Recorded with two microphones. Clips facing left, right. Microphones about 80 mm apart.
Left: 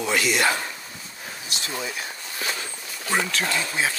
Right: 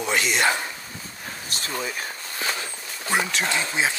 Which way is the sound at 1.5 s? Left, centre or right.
Right.